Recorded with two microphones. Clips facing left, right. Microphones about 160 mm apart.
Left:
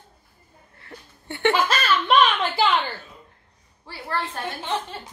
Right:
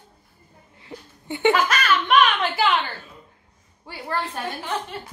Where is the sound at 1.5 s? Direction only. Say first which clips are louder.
Right 1 dB; 30° left (ahead or behind).